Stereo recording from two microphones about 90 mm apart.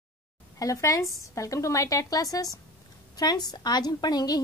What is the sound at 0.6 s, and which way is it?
A woman's voice, 35° left (ahead or behind).